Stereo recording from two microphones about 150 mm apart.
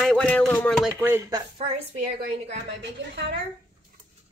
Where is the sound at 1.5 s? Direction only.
45° right (ahead or behind).